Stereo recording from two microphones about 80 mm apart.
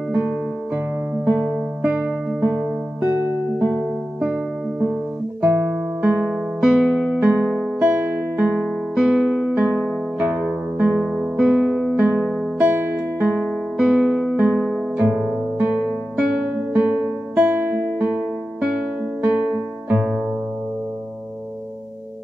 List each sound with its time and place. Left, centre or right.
1.1 s music: right
3.1 s music: right
4.2 s music: centre
8.9 s music: centre
9.5 s music: centre
11.1 s music: centre
12.5 s guitar: right
15.0 s music: centre